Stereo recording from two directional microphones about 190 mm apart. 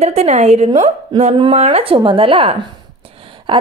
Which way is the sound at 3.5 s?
25° right (ahead or behind).